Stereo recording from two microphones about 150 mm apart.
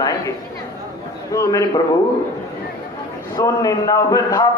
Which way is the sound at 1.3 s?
20° left (ahead or behind).